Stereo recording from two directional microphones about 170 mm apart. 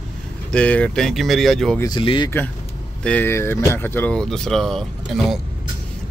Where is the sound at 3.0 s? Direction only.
10° left (ahead or behind).